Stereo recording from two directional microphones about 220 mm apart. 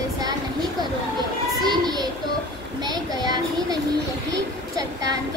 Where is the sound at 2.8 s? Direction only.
20° right (ahead or behind).